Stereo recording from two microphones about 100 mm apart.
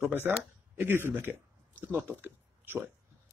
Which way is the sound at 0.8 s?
20° right (ahead or behind).